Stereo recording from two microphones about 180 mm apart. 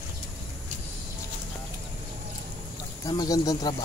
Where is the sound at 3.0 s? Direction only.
20° left (ahead or behind).